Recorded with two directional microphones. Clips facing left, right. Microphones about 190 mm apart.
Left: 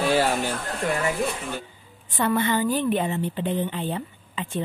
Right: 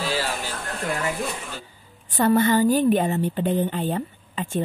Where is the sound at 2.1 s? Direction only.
40° right (ahead or behind).